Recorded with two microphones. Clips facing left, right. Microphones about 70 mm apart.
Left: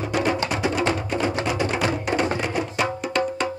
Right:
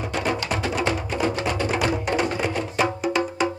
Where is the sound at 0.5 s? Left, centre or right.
Centre.